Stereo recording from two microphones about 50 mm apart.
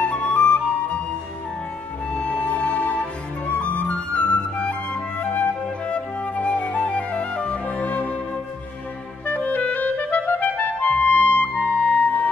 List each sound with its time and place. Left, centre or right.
0.0 s flute: left
2.1 s music: left
5.2 s flute: left
9.2 s clarinet: left